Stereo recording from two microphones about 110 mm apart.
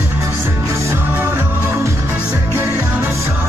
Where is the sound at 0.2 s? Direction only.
25° right (ahead or behind).